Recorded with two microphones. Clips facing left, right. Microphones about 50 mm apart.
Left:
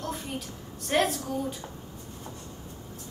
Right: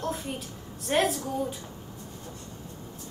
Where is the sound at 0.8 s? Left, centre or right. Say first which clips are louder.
Even; centre.